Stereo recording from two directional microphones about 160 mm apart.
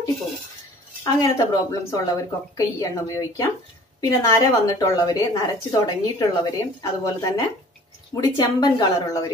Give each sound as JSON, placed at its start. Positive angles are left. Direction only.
{"t": 1.0, "sound": "a woman's voice", "side_deg": 25}